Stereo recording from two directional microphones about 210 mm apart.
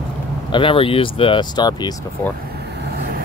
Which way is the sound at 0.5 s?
25° left (ahead or behind).